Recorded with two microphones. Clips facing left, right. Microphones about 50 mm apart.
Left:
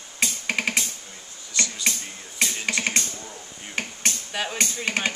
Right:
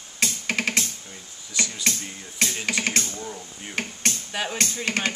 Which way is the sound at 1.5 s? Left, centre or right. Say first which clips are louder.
Even; centre.